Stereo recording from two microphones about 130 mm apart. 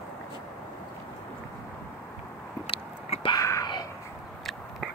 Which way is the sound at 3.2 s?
25° left (ahead or behind).